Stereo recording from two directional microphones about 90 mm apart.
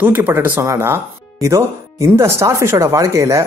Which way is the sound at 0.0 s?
25° right (ahead or behind).